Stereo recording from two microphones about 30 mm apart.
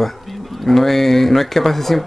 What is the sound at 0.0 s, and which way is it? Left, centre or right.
Speech, centre.